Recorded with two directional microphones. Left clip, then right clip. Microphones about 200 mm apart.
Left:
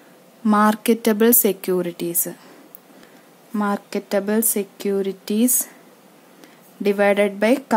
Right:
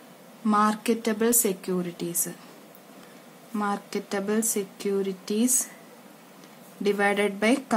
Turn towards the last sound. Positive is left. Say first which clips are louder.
# left 6 dB
turn(degrees=40)  # may be behind; listen again after turning